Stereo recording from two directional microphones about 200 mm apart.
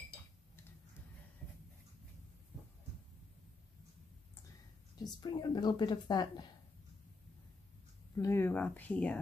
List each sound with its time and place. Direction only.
1.4 s dog: 5° left (ahead or behind)
4.9 s speech: 20° left (ahead or behind)
8.2 s speech: 10° left (ahead or behind)